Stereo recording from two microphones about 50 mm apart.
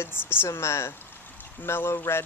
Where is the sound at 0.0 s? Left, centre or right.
Left.